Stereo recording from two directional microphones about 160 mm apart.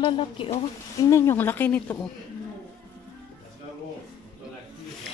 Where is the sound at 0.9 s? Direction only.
20° left (ahead or behind).